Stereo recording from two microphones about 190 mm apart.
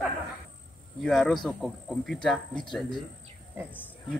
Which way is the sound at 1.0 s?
Centre (ahead or behind).